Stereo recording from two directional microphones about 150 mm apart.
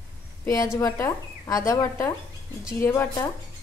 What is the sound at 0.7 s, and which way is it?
Speech, 20° left (ahead or behind).